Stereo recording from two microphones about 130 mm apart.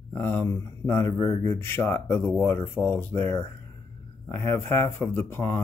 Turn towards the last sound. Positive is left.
turn(degrees=20)  # may be behind; listen again after turning